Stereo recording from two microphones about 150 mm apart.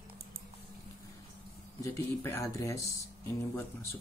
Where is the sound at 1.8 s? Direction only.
20° left (ahead or behind).